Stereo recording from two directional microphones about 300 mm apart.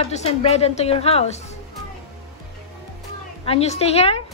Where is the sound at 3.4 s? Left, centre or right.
Centre.